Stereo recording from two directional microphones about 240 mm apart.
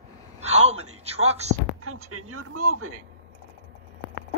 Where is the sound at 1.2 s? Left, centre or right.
Right.